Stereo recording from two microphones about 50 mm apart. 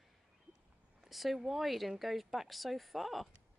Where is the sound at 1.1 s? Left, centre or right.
Centre.